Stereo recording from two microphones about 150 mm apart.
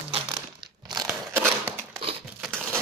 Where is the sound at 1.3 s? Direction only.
15° right (ahead or behind).